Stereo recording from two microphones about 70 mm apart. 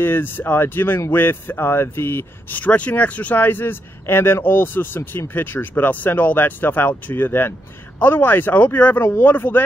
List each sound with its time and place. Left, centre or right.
0.0 s speech: left
2.6 s speech: left